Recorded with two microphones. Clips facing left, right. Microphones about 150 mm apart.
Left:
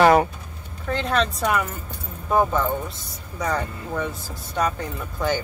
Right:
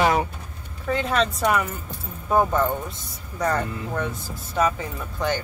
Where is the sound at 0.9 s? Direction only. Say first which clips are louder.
Even; 5° right (ahead or behind).